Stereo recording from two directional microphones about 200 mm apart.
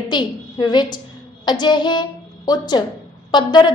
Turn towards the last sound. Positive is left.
turn(degrees=20)  # may be behind; listen again after turning